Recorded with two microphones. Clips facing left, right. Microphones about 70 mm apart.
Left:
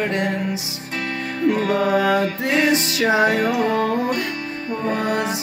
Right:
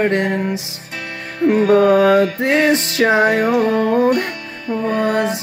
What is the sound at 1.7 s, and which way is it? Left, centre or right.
Music, right.